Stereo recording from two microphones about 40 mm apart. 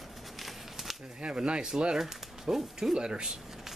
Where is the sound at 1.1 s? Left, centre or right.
Right.